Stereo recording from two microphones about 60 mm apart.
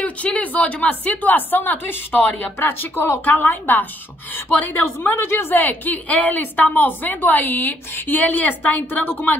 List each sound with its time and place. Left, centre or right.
0.0 s a woman's voice: left
5.3 s a woman's voice: left